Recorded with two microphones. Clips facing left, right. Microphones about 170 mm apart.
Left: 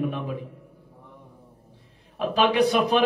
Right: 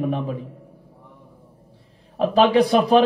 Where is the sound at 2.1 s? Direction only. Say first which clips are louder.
Right 5 dB; 35° right (ahead or behind).